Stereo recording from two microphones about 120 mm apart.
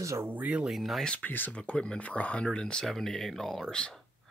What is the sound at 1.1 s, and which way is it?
Speech, 15° left (ahead or behind).